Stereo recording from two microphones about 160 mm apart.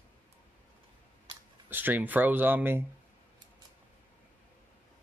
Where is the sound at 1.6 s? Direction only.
10° right (ahead or behind).